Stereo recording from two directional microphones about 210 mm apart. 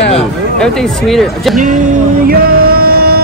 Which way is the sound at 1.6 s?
40° right (ahead or behind).